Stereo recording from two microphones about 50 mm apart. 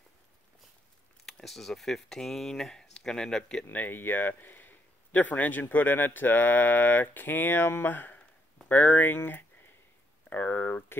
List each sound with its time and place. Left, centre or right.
1.2 s speech: centre
3.6 s speech: left